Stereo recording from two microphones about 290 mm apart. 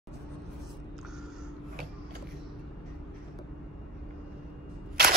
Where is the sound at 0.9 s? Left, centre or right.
Centre.